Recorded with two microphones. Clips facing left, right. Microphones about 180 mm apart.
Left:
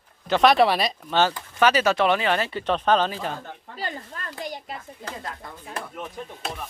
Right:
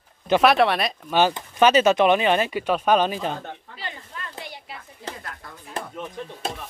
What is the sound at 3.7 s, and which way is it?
Speech, 40° left (ahead or behind).